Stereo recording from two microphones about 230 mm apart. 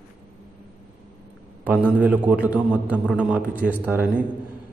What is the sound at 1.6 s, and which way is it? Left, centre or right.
Mantra, centre.